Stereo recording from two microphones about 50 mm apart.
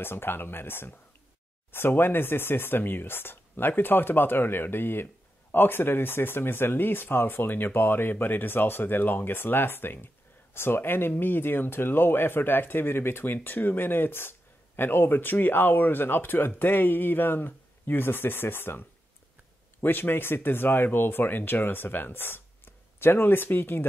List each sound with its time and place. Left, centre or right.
0.0 s speech: left